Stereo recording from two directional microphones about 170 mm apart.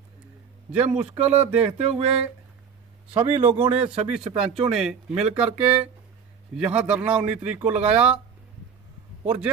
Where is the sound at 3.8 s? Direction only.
35° right (ahead or behind).